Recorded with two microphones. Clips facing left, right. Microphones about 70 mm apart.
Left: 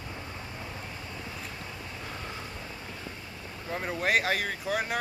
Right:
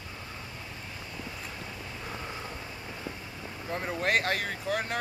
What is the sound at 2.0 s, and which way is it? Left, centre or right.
Vehicle, centre.